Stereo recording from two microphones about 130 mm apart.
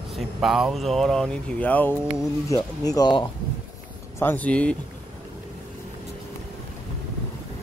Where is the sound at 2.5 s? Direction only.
30° left (ahead or behind).